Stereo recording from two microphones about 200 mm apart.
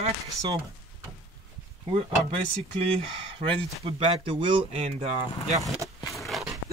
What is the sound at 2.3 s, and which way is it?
Speech, 30° right (ahead or behind).